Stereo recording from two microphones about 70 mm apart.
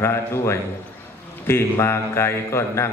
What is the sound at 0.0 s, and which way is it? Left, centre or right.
A man's voice, left.